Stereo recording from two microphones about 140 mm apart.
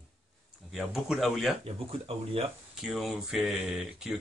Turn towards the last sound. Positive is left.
turn(degrees=-5)  # may be behind; listen again after turning